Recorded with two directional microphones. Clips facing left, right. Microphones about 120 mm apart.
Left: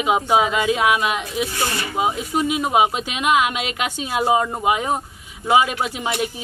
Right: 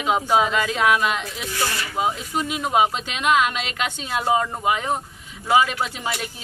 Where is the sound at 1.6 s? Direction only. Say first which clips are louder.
Left 2 dB; 25° left (ahead or behind).